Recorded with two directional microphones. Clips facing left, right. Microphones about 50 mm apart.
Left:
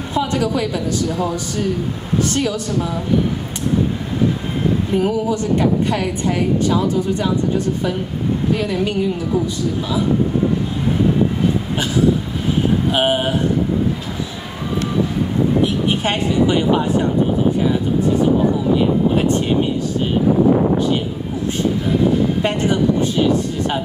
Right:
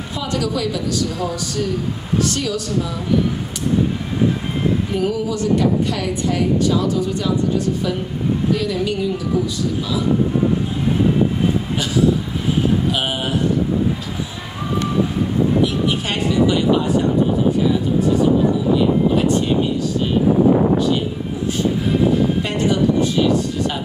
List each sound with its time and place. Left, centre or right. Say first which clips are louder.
0.1 s a woman's voice: left 4 dB; left
4.9 s a woman's voice: left 3 dB; left
12.9 s a woman's voice: left 5 dB; left
15.9 s a woman's voice: left 2 dB; left
22.4 s a woman's voice: left 1 dB; left